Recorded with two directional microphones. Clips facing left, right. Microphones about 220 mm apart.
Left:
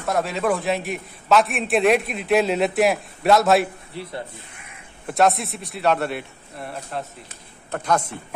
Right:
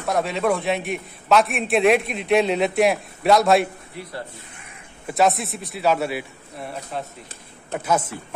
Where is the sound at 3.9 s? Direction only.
30° left (ahead or behind).